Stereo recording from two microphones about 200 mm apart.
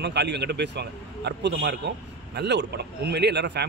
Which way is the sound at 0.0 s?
60° right (ahead or behind).